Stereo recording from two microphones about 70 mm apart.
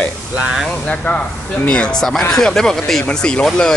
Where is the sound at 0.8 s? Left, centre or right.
Centre.